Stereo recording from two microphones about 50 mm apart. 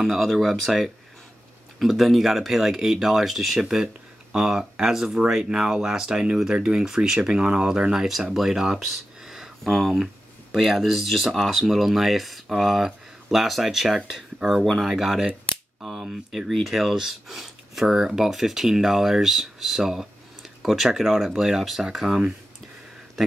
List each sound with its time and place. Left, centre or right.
0.0 s speech: centre
15.5 s cap gun: left
15.8 s speech: centre